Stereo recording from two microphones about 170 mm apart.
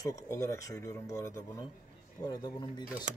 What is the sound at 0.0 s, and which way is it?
Speech, 20° left (ahead or behind).